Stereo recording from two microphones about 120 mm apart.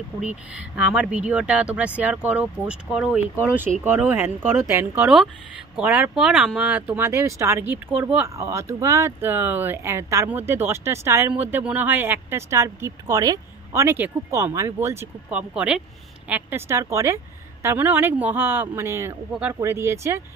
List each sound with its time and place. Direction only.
0.3 s a woman's voice: 10° right (ahead or behind)
5.0 s a woman's voice: 5° right (ahead or behind)
7.1 s speech: 25° right (ahead or behind)
7.7 s a woman's voice: 15° right (ahead or behind)